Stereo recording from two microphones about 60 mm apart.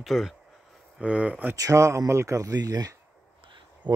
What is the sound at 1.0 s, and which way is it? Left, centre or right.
Speech, right.